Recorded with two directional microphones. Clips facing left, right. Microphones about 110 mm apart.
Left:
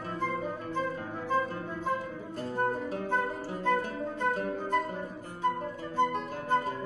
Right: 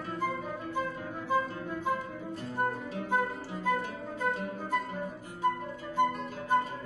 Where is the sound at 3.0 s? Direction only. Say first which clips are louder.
Right 2 dB; 15° right (ahead or behind).